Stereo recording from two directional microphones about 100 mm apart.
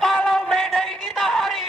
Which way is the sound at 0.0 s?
Centre (ahead or behind).